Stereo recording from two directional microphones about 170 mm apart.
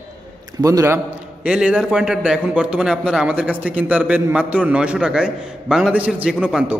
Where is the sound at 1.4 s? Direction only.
5° right (ahead or behind).